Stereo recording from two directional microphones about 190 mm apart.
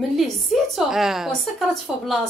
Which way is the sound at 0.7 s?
Centre (ahead or behind).